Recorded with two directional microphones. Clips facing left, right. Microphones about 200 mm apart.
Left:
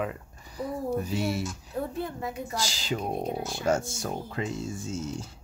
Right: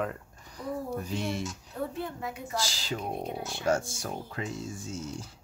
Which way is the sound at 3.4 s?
40° left (ahead or behind).